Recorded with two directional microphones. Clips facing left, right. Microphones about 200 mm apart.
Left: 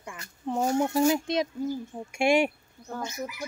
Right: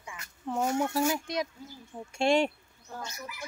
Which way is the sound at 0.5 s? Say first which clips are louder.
Left 4 dB; 35° left (ahead or behind).